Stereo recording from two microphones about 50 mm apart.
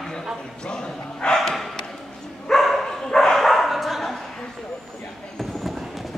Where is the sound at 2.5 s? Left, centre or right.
Centre.